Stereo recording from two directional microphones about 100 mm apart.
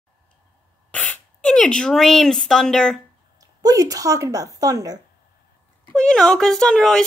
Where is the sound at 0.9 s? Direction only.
15° left (ahead or behind).